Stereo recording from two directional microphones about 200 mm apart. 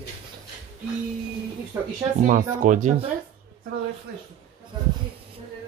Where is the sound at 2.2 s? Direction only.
40° right (ahead or behind).